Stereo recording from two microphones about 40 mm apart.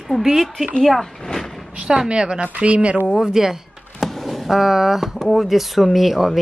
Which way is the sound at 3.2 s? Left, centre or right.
Centre.